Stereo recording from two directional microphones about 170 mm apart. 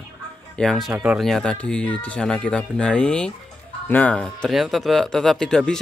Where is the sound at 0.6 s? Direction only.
Centre (ahead or behind).